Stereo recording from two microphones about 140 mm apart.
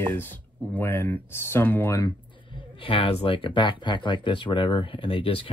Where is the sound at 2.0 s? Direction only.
30° left (ahead or behind).